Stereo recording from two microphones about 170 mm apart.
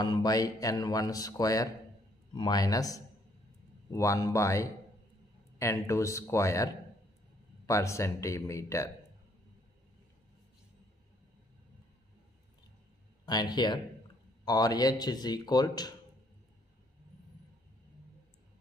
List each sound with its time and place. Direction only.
0.0 s speech: 25° left (ahead or behind)
13.2 s speech: 25° left (ahead or behind)